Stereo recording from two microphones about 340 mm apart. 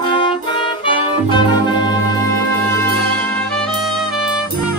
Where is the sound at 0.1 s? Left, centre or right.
Centre.